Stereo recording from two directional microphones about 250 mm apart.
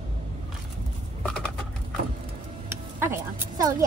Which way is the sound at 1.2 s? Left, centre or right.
Centre.